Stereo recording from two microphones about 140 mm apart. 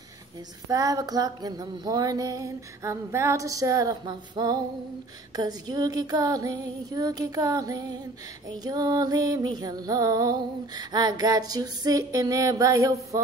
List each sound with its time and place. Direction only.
0.7 s music: 25° right (ahead or behind)